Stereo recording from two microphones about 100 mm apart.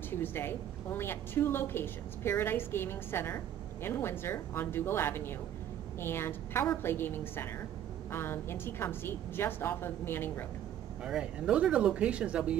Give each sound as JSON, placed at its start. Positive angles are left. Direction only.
{"t": 0.2, "sound": "a woman's voice", "side_deg": 20}
{"t": 11.1, "sound": "speech", "side_deg": -5}